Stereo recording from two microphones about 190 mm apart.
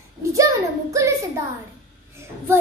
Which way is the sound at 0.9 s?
15° right (ahead or behind).